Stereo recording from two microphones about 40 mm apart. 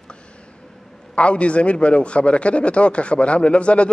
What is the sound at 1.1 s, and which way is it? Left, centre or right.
Speech, left.